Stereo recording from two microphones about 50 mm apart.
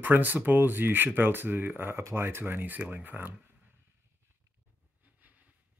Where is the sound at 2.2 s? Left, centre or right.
Right.